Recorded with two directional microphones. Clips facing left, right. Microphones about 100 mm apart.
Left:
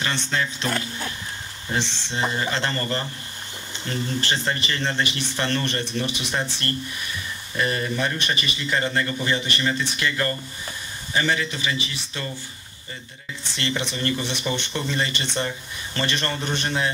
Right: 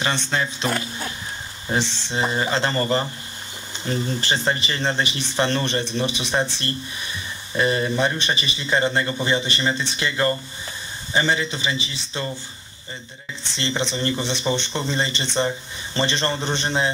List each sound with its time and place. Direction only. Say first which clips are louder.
0.0 s speech: right 2 dB; 25° right (ahead or behind)
13.6 s speech: right 2 dB; 25° right (ahead or behind)